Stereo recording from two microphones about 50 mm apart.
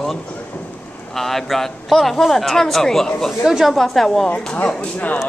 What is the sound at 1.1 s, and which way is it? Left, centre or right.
A man's voice, centre.